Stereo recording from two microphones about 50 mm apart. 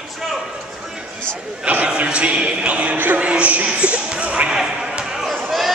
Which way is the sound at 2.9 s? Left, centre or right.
Right.